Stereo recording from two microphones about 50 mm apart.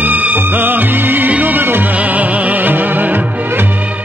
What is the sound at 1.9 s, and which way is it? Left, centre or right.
Music, right.